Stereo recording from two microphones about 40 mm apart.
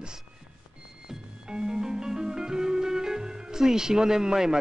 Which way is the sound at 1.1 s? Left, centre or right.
Centre.